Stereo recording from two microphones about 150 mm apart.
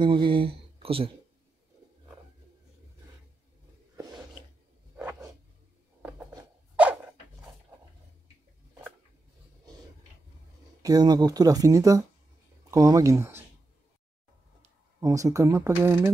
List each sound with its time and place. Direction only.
0.0 s speech: 35° right (ahead or behind)
10.8 s speech: 25° right (ahead or behind)
15.0 s speech: 20° right (ahead or behind)